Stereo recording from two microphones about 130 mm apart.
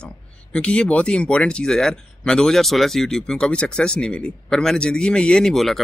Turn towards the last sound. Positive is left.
turn(degrees=0)  # may be behind; listen again after turning